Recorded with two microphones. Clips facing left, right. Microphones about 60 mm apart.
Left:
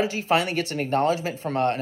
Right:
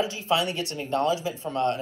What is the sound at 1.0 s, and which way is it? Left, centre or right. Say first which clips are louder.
Speech: left 1 dB; left.